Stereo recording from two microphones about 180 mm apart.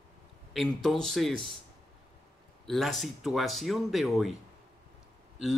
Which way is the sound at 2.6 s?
Centre (ahead or behind).